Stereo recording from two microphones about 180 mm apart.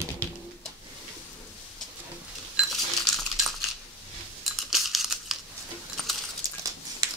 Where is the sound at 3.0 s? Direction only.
Centre (ahead or behind).